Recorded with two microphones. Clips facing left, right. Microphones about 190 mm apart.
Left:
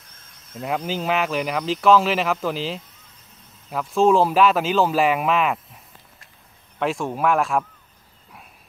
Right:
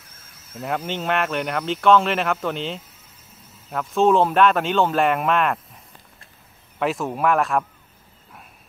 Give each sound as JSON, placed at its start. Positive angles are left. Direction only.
{"t": 0.0, "sound": "speech", "side_deg": -5}
{"t": 6.8, "sound": "speech", "side_deg": 0}